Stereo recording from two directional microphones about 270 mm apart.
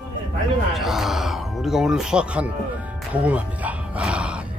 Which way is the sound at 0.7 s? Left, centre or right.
Centre.